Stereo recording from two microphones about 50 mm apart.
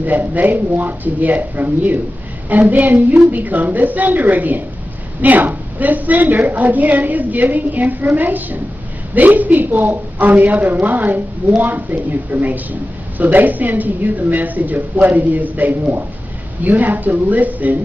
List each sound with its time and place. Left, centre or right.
0.0 s a woman's voice: right